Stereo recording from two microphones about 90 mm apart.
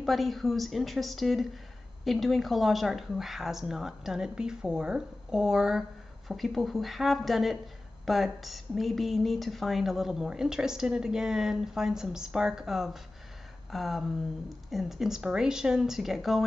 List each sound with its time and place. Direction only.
0.0 s a woman's voice: centre (ahead or behind)